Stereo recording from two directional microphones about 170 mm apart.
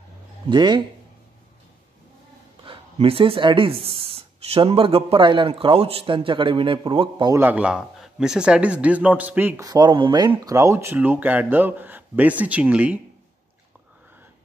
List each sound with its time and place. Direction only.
0.5 s speech: 25° right (ahead or behind)
2.6 s speech: 35° right (ahead or behind)
7.3 s speech: 10° right (ahead or behind)
9.7 s speech: 25° right (ahead or behind); by 13.0 s 10° right (ahead or behind)